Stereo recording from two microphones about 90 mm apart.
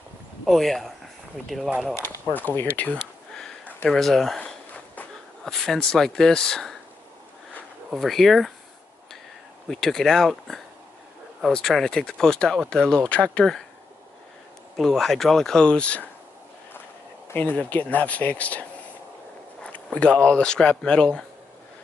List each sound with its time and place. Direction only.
0.5 s speech: 5° left (ahead or behind)
2.0 s speech: 25° left (ahead or behind); by 4.4 s 5° left (ahead or behind)
4.4 s a sound: 15° left (ahead or behind)
5.4 s speech: 5° left (ahead or behind)
7.9 s speech: centre (ahead or behind)
9.7 s speech: 5° left (ahead or behind)
14.8 s speech: centre (ahead or behind)
17.3 s speech: 15° left (ahead or behind)